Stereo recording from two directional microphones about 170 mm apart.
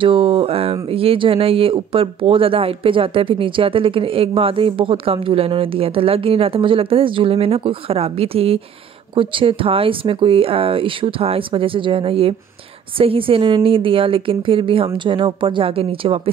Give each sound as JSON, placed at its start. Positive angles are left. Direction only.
{"t": 0.0, "sound": "speech", "side_deg": -30}